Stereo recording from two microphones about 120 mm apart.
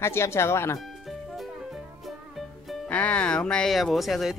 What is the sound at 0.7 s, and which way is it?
Music, centre (ahead or behind).